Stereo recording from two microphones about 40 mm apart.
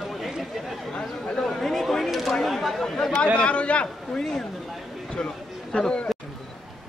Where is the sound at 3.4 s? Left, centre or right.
Left.